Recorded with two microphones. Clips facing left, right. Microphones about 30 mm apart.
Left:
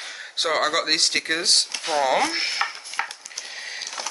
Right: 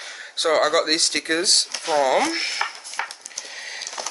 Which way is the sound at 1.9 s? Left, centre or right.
Centre.